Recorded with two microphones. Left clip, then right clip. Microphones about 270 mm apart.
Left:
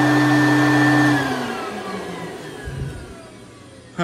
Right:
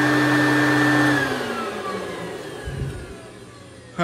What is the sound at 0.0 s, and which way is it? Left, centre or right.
Vacuum cleaner, left.